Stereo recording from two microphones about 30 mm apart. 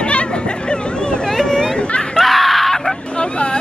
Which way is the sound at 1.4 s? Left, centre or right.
Left.